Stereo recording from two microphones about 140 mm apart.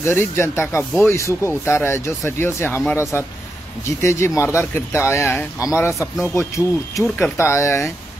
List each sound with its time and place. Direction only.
0.0 s speech: 15° left (ahead or behind)
7.0 s speech: centre (ahead or behind)
7.3 s speech: 20° left (ahead or behind)